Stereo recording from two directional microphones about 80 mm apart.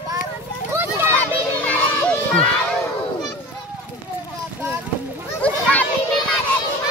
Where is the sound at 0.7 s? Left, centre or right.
Right.